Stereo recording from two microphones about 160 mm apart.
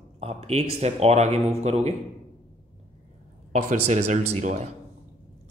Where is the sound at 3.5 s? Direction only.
45° right (ahead or behind).